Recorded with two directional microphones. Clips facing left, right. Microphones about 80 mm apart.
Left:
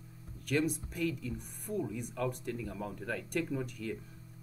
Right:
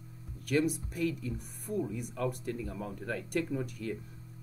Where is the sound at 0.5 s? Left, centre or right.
Centre.